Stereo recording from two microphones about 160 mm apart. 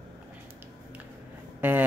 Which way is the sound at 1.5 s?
10° right (ahead or behind).